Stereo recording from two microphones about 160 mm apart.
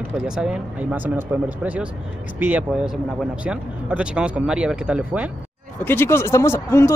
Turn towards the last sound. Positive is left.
turn(degrees=15)  # may be behind; listen again after turning